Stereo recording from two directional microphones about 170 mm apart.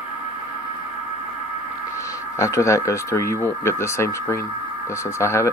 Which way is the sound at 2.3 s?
15° left (ahead or behind).